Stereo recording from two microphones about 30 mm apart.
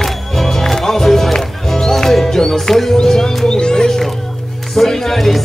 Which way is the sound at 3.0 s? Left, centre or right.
Centre.